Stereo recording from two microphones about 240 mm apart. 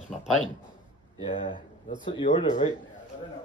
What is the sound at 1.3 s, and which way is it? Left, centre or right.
Speech, left.